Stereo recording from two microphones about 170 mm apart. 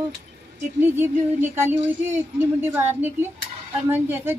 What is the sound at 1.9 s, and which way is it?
A woman's voice, 10° right (ahead or behind).